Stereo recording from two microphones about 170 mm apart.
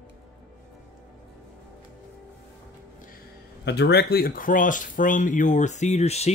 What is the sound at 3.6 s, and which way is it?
Speech, 80° left.